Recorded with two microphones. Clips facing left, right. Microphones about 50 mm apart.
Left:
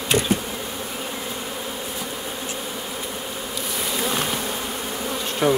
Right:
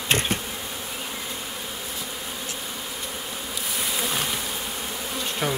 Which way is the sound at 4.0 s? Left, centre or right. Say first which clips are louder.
Left 5 dB; centre.